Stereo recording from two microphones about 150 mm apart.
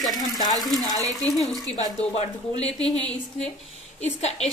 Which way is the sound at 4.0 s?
50° left (ahead or behind).